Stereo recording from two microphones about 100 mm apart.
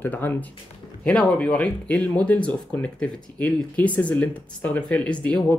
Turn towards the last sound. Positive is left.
turn(degrees=10)  # may be behind; listen again after turning